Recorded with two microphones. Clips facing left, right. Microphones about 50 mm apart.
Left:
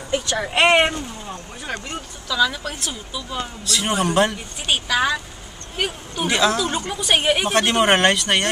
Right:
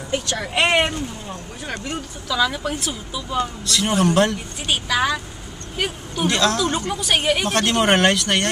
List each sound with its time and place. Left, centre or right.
0.4 s speech: centre
1.7 s speech: centre